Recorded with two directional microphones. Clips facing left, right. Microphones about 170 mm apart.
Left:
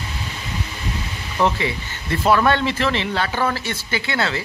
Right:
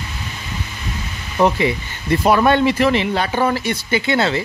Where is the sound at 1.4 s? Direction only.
15° right (ahead or behind).